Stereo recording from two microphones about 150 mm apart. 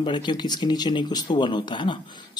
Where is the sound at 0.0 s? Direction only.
30° left (ahead or behind).